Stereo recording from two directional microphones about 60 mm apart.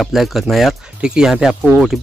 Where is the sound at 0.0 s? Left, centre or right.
Centre.